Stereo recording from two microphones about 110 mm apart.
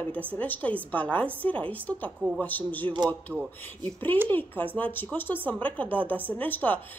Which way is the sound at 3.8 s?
15° left (ahead or behind).